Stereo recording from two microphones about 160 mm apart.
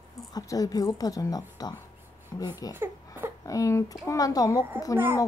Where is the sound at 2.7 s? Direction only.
15° right (ahead or behind).